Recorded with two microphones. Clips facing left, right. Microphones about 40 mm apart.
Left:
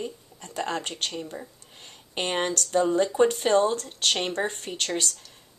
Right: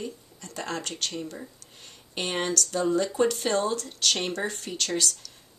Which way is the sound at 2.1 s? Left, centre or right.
Left.